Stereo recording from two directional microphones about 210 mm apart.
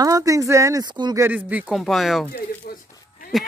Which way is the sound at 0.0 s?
15° right (ahead or behind).